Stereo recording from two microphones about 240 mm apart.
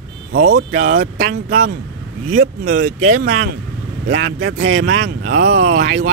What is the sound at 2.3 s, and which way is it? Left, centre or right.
Speech, right.